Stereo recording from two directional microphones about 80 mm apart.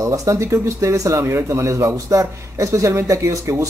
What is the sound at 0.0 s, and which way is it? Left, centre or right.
Speech, right.